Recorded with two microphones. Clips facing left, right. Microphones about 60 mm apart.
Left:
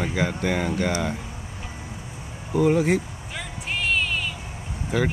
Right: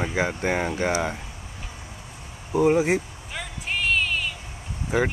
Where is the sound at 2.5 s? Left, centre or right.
Centre.